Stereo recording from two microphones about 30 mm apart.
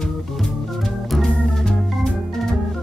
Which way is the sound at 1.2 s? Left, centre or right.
Left.